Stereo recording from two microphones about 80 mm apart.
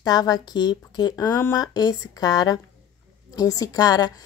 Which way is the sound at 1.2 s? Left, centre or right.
Left.